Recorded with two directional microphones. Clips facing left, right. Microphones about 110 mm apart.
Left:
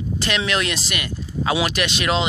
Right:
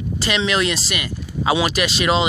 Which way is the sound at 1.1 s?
70° right (ahead or behind).